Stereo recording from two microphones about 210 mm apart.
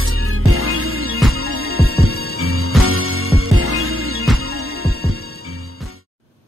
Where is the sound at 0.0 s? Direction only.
85° right.